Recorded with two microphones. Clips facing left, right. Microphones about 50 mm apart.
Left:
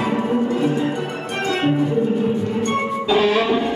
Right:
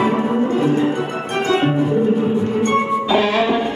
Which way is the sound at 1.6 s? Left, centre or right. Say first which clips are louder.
Right 1 dB; centre.